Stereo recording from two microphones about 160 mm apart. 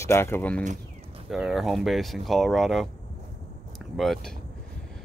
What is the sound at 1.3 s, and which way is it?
Speech, 5° right (ahead or behind).